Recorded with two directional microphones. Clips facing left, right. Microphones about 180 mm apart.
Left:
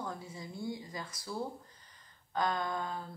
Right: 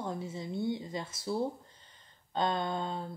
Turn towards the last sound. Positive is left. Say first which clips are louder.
# right 3 dB
turn(degrees=-25)  # may be behind; listen again after turning